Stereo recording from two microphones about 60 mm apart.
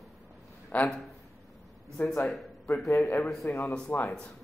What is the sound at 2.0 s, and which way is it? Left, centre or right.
Speech, left.